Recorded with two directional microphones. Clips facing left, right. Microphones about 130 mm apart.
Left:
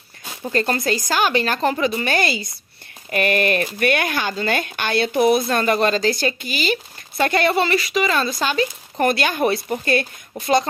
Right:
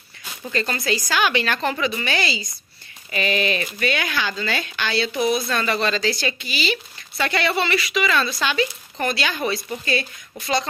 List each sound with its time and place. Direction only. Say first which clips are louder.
0.2 s speech: left 4 dB; 40° left (ahead or behind)